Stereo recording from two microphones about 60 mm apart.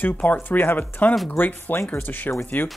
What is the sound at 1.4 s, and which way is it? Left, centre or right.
Speech, left.